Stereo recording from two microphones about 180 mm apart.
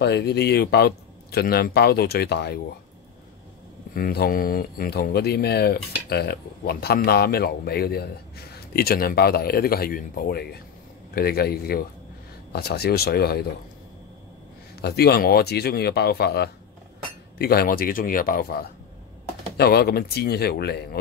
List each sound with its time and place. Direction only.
0.0 s speech: 65° left (ahead or behind)
3.9 s speech: 55° left (ahead or behind)
14.8 s a man's voice: 60° left (ahead or behind)